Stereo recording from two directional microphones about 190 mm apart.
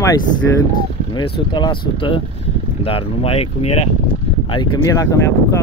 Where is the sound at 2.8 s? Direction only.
30° left (ahead or behind).